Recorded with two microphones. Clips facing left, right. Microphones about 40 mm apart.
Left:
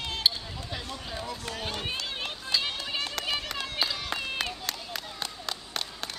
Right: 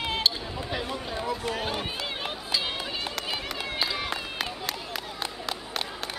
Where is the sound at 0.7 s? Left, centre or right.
Centre.